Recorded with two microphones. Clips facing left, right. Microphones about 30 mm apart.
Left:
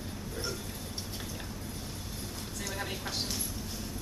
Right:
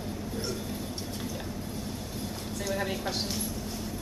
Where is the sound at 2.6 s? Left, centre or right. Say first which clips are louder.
Right 7 dB; centre.